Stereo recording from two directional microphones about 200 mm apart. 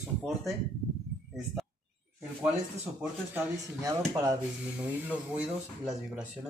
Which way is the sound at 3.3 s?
10° right (ahead or behind).